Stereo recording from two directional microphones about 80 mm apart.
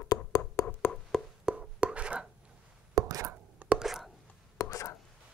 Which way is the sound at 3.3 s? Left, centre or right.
Right.